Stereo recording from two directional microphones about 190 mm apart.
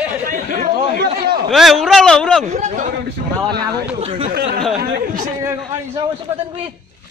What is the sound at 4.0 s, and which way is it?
Speech, 30° right (ahead or behind).